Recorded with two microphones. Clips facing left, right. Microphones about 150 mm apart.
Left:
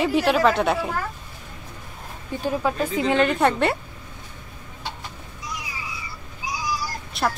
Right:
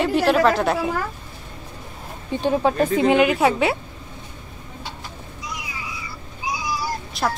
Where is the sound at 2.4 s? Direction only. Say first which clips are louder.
Right 4 dB; 25° right (ahead or behind).